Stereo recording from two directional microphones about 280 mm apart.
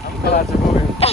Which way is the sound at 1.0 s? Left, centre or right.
Left.